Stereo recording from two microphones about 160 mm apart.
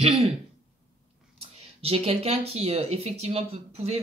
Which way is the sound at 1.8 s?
40° right (ahead or behind).